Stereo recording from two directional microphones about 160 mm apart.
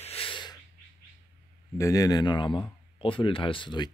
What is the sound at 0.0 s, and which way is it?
Snort, 35° left (ahead or behind).